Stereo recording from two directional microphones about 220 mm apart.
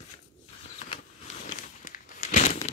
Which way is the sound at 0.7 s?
35° left (ahead or behind).